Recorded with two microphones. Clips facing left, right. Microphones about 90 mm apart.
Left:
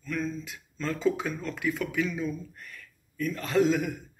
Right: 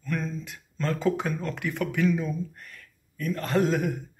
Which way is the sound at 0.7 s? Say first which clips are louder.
Right 1 dB; 55° right (ahead or behind).